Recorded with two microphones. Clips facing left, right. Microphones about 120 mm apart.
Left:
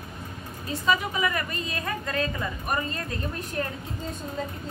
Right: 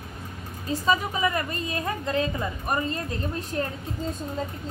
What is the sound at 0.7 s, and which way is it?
A woman's voice, 30° right (ahead or behind).